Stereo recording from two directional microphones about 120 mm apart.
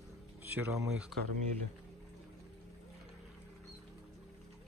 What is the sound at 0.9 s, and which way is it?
Speech, 10° right (ahead or behind).